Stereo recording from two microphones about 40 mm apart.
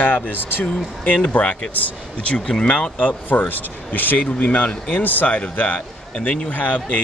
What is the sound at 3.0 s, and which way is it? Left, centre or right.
Speech, left.